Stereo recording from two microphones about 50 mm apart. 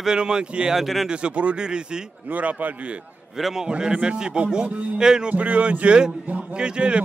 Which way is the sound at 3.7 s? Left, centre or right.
Centre.